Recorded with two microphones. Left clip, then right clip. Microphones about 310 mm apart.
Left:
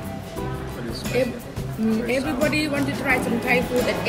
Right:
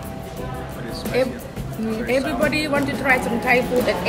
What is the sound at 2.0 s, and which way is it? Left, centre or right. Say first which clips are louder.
A woman's voice: right 4 dB; centre.